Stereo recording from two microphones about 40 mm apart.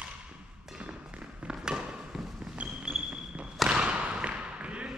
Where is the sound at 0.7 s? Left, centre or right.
Right.